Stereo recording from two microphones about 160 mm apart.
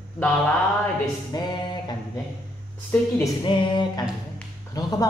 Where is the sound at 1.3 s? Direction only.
25° left (ahead or behind).